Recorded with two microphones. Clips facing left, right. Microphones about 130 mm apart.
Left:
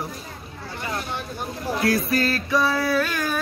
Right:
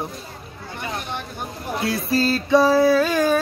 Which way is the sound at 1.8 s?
30° right (ahead or behind).